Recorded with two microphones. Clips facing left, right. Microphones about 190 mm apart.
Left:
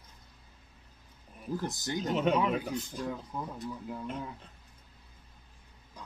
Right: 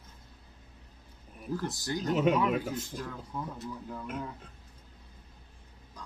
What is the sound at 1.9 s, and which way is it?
Speech, centre (ahead or behind).